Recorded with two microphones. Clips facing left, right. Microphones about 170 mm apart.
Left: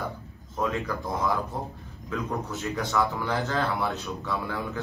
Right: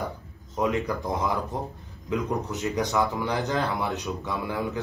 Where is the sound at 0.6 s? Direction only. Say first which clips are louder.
Right 3 dB; 20° right (ahead or behind).